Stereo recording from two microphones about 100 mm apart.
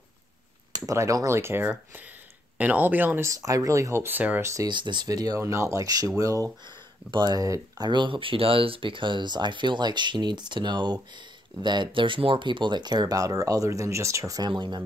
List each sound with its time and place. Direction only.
0.7 s speech: 35° right (ahead or behind)
3.3 s speech: 35° right (ahead or behind); by 4.4 s 15° right (ahead or behind)
4.6 s speech: 50° right (ahead or behind)
7.1 s speech: 45° right (ahead or behind)
14.5 s speech: 50° right (ahead or behind)